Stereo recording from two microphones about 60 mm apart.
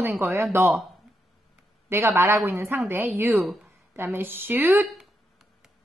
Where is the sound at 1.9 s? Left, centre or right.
Right.